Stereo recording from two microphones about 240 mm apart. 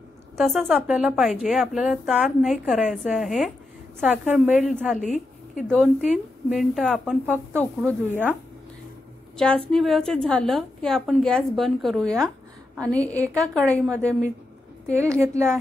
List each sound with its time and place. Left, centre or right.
0.4 s a woman's voice: centre
5.0 s a sound: left
5.7 s a woman's voice: centre
8.1 s a woman's voice: centre
9.7 s a woman's voice: centre
14.9 s a woman's voice: centre